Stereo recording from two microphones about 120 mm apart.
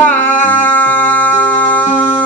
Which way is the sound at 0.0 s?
15° left (ahead or behind).